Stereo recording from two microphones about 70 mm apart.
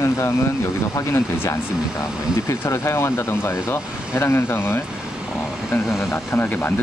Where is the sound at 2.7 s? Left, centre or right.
Left.